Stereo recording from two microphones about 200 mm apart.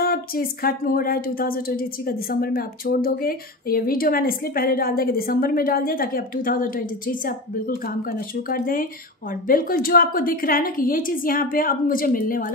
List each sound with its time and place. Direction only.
0.0 s speech: 50° left (ahead or behind)